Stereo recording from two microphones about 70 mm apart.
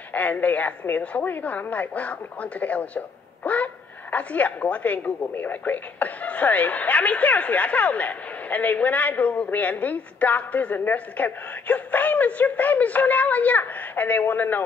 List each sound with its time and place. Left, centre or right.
0.1 s speech: left